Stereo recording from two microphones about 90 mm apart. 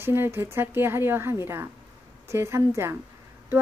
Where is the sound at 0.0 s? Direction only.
25° right (ahead or behind).